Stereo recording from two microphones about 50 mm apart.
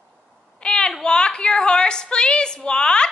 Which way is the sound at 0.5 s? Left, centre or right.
Centre.